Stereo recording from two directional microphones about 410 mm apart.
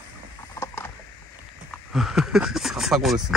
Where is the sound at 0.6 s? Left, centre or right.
Centre.